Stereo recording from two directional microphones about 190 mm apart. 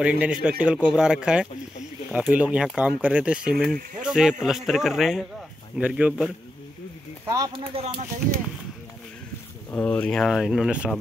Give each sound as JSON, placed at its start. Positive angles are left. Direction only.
{"t": 0.0, "sound": "a man's voice", "side_deg": -5}
{"t": 7.2, "sound": "speech", "side_deg": -15}
{"t": 7.7, "sound": "speech", "side_deg": -35}
{"t": 9.7, "sound": "speech", "side_deg": 10}